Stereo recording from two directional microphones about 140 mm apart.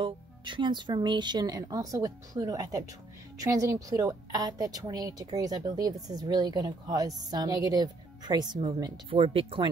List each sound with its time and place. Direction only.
0.0 s a woman's voice: 35° right (ahead or behind)